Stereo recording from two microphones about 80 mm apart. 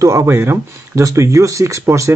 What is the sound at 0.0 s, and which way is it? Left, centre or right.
Speech, right.